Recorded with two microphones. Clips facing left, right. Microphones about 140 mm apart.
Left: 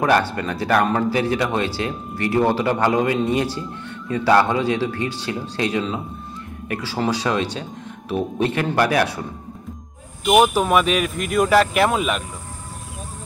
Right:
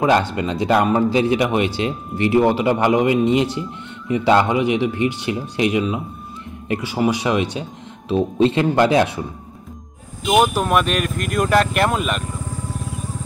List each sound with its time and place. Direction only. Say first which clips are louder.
0.0 s speech: right 2 dB; 20° right (ahead or behind)
10.2 s speech: left 1 dB; centre (ahead or behind)